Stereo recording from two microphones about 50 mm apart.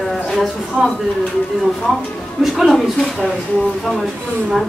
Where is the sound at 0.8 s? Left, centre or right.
Centre.